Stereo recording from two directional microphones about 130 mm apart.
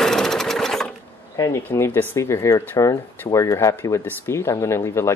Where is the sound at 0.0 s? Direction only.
5° left (ahead or behind).